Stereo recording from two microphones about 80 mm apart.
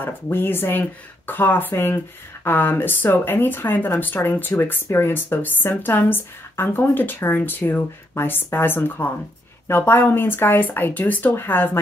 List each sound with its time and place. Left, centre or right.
0.0 s speech: left